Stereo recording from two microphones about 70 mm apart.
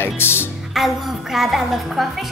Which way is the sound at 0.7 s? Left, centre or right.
Centre.